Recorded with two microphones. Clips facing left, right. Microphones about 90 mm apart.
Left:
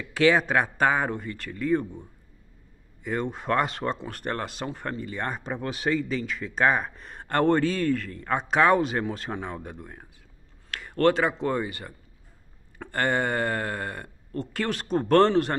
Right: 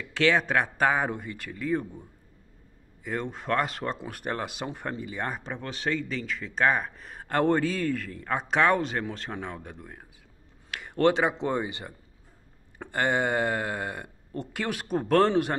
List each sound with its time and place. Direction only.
0.0 s speech: 10° left (ahead or behind)
5.5 s speech: 10° left (ahead or behind)
10.7 s speech: 15° right (ahead or behind)